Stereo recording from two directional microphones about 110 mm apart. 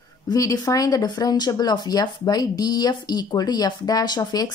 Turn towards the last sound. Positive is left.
turn(degrees=35)  # may be behind; listen again after turning